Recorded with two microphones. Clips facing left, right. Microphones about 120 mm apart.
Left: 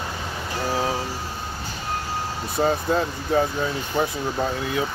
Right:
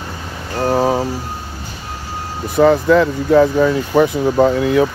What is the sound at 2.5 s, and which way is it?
Speech, 70° right (ahead or behind).